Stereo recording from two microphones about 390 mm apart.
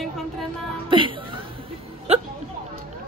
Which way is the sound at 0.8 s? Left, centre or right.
Centre.